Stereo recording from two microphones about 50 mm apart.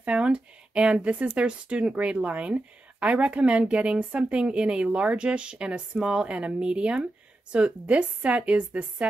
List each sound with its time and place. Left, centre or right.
0.0 s speech: right